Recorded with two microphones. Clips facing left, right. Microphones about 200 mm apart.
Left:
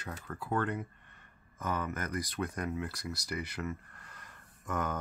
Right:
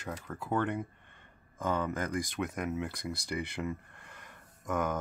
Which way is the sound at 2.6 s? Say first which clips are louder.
Right 2 dB; 20° right (ahead or behind).